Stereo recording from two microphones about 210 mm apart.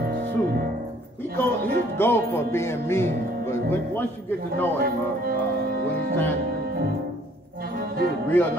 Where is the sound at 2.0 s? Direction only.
10° left (ahead or behind).